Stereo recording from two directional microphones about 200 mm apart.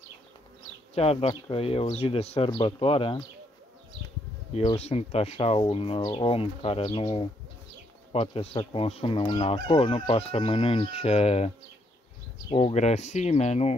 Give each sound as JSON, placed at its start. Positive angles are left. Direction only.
{"t": 0.9, "sound": "speech", "side_deg": 30}
{"t": 4.6, "sound": "speech", "side_deg": 30}